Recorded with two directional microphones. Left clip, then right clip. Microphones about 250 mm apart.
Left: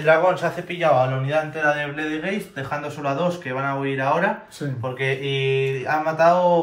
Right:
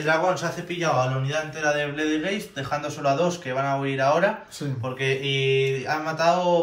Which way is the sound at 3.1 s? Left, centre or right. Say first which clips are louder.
Even; centre.